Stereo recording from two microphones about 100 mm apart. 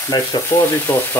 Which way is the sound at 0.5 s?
25° left (ahead or behind).